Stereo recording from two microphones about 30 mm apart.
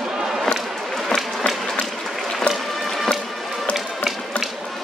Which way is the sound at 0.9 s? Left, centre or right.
Centre.